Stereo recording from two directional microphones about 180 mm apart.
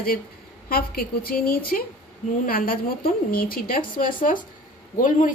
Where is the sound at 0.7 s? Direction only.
55° left (ahead or behind).